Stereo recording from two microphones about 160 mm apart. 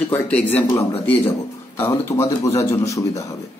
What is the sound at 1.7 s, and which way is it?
Speech, 15° left (ahead or behind).